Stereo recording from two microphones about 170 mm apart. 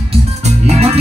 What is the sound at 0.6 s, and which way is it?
Music, 35° right (ahead or behind).